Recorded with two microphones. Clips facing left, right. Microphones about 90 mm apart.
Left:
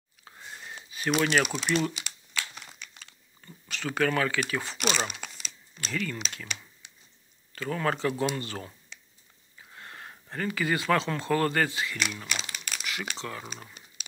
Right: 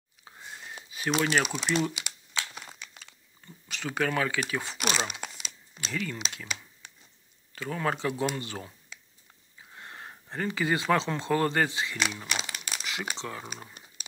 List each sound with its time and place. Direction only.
0.2 s a sound: 5° right (ahead or behind)
1.2 s speech: 15° right (ahead or behind)
3.6 s speech: 15° right (ahead or behind)
5.1 s crumpling: 10° right (ahead or behind)
5.9 s speech: 15° right (ahead or behind)
7.5 s speech: 10° right (ahead or behind)